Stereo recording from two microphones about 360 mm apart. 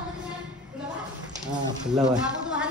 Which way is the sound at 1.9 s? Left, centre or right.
Centre.